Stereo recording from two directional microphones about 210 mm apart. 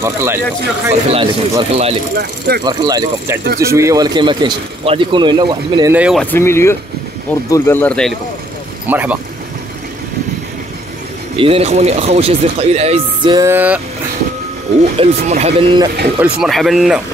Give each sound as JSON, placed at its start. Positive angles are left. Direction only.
{"t": 0.0, "sound": "speech", "side_deg": -10}
{"t": 1.1, "sound": "speech", "side_deg": -20}
{"t": 2.1, "sound": "speech", "side_deg": -50}
{"t": 2.6, "sound": "speech", "side_deg": -20}
{"t": 5.9, "sound": "speech", "side_deg": -5}
{"t": 6.3, "sound": "speech", "side_deg": 10}
{"t": 8.8, "sound": "speech", "side_deg": -10}
{"t": 11.3, "sound": "speech", "side_deg": -25}
{"t": 13.5, "sound": "speech", "side_deg": -10}
{"t": 15.0, "sound": "speech", "side_deg": -30}
{"t": 16.2, "sound": "speech", "side_deg": 0}